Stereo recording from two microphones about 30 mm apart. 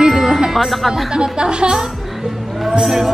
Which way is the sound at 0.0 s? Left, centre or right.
Centre.